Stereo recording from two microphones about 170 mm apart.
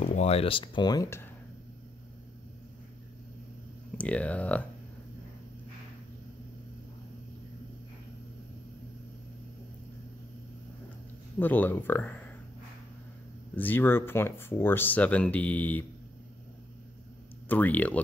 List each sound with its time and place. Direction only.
0.0 s speech: 45° left (ahead or behind); by 1.2 s 20° left (ahead or behind)
4.0 s speech: 10° left (ahead or behind)
11.3 s speech: 10° left (ahead or behind)
13.6 s speech: 10° left (ahead or behind)
17.5 s speech: 10° left (ahead or behind)